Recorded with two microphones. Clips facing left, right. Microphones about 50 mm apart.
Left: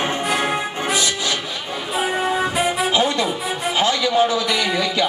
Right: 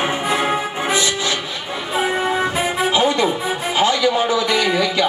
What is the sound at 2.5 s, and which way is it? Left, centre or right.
Music, centre.